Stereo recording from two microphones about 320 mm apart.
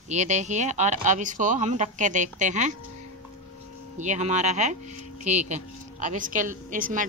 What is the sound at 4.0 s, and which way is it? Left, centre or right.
Speech, right.